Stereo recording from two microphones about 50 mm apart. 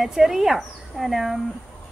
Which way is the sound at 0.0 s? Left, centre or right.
Centre.